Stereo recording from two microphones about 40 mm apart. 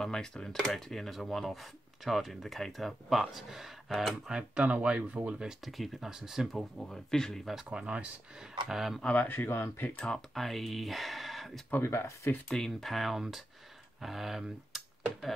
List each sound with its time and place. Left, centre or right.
0.0 s speech: centre
4.3 s speech: right
5.7 s speech: centre
6.0 s speech: centre
6.8 s speech: centre
7.7 s speech: right
8.6 s speech: centre
9.0 s speech: left
9.5 s speech: left
9.8 s speech: left
10.1 s speech: centre
11.8 s speech: left
12.4 s speech: centre
12.9 s speech: centre